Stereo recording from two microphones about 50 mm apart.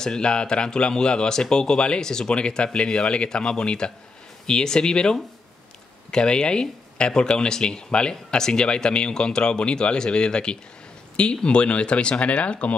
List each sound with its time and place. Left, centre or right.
0.0 s speech: centre